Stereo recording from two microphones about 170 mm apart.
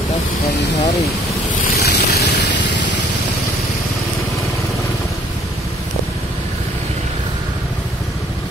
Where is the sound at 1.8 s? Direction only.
75° left (ahead or behind).